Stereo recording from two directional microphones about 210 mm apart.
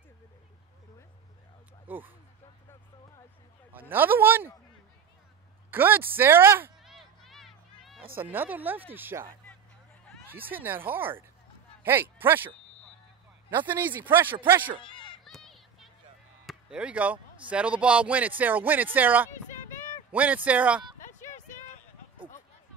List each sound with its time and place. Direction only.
1.9 s speech: 10° right (ahead or behind)
3.9 s speech: 10° right (ahead or behind)
5.7 s speech: 10° right (ahead or behind)
6.8 s a sound: centre (ahead or behind)
8.2 s a man's voice: 10° right (ahead or behind)
15.0 s run: centre (ahead or behind)
16.4 s speech: 5° right (ahead or behind)
21.1 s a sound: 35° left (ahead or behind)